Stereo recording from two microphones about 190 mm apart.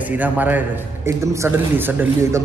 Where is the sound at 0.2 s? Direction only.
10° right (ahead or behind).